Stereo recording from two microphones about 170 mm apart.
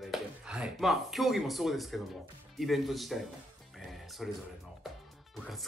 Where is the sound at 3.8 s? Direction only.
Centre (ahead or behind).